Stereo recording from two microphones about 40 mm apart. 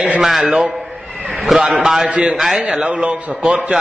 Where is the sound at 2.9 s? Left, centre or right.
Right.